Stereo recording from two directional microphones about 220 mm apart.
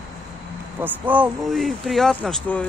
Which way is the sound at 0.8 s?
5° right (ahead or behind).